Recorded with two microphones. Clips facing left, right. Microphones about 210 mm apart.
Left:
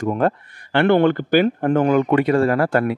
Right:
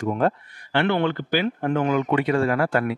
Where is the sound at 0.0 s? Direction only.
50° left (ahead or behind).